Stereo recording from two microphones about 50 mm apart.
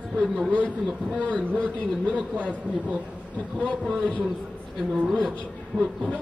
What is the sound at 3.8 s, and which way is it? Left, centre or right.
Speech, centre.